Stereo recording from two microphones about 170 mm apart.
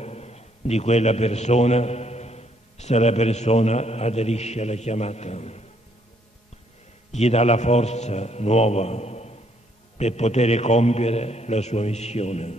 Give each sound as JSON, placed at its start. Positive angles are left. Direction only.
{"t": 0.0, "sound": "a man's voice", "side_deg": 40}
{"t": 7.1, "sound": "a man's voice", "side_deg": 40}